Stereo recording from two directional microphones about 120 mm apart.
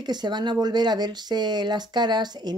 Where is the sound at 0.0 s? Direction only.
35° right (ahead or behind).